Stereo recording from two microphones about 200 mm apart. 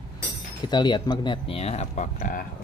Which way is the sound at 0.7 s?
20° left (ahead or behind).